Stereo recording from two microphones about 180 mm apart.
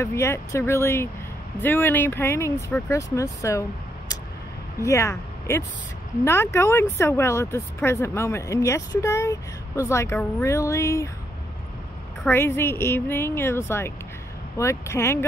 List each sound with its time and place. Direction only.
0.0 s speech: 15° left (ahead or behind)
4.8 s speech: 15° left (ahead or behind)
12.3 s speech: 15° left (ahead or behind)